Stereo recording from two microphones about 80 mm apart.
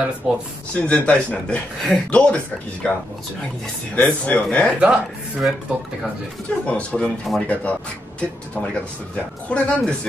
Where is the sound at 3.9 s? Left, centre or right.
Centre.